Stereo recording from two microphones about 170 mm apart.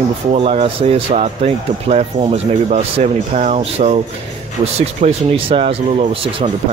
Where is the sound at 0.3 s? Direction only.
35° right (ahead or behind).